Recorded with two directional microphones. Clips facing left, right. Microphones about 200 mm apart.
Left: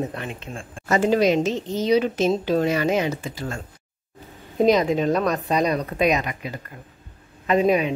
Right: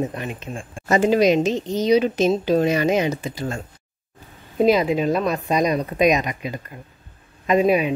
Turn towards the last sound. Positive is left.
turn(degrees=-10)  # may be behind; listen again after turning